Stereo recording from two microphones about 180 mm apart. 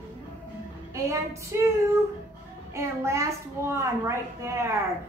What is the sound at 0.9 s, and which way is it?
Speech, 15° right (ahead or behind).